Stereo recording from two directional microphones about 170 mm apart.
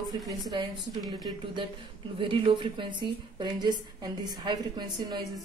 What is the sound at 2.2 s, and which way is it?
A woman's voice, 30° right (ahead or behind).